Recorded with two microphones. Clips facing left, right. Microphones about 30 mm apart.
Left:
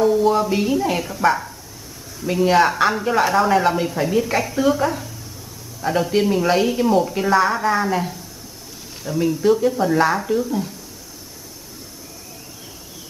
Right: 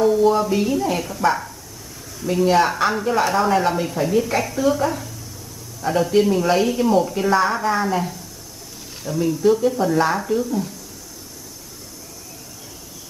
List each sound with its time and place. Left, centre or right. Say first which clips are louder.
0.0 s a sound: even; centre
0.5 s a woman's voice: left 1 dB; centre
9.5 s a woman's voice: even; centre